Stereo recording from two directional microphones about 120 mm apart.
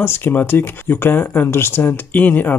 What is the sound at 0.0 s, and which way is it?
Speech, 20° left (ahead or behind).